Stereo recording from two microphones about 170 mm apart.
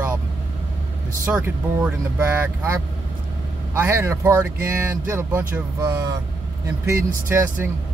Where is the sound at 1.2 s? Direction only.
10° right (ahead or behind).